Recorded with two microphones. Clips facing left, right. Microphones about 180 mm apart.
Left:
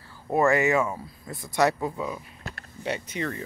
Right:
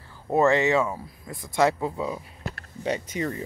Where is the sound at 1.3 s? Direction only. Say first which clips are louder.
Left 1 dB; 20° left (ahead or behind).